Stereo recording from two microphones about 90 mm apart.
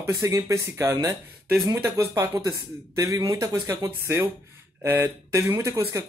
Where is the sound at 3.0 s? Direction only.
50° right (ahead or behind).